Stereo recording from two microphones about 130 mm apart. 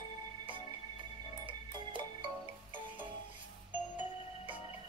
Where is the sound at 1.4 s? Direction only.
40° right (ahead or behind).